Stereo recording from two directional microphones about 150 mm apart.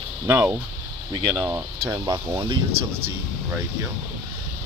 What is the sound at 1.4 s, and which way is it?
Speech, 20° right (ahead or behind).